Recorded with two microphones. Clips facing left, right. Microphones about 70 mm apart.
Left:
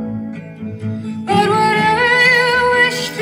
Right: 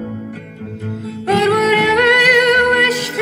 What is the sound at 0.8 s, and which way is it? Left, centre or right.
Music, right.